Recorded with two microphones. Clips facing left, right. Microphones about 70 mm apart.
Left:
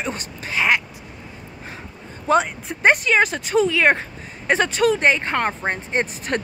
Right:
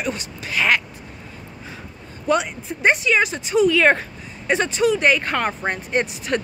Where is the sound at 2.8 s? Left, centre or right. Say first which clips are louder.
Left 1 dB; left.